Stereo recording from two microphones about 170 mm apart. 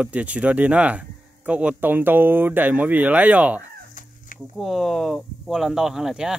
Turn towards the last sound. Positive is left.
turn(degrees=-5)  # may be behind; listen again after turning